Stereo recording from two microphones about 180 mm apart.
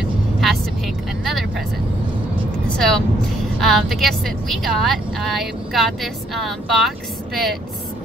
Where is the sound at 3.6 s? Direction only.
Centre (ahead or behind).